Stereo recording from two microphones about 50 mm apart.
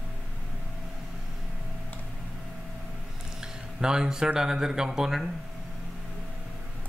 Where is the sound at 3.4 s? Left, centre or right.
Centre.